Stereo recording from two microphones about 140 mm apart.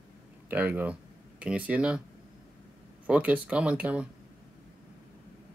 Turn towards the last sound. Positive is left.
turn(degrees=-10)  # may be behind; listen again after turning